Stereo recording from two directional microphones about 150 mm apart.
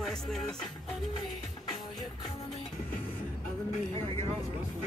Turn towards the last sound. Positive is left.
turn(degrees=-40)  # may be behind; listen again after turning